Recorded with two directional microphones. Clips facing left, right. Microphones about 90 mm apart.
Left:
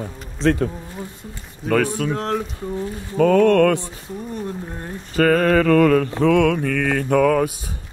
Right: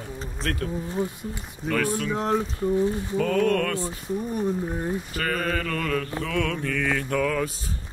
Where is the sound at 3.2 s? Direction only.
80° left.